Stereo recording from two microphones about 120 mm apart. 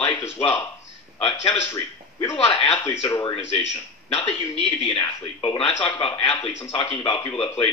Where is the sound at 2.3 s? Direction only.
50° left (ahead or behind).